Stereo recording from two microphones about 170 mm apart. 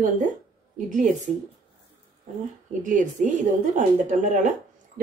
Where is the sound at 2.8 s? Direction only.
50° right (ahead or behind).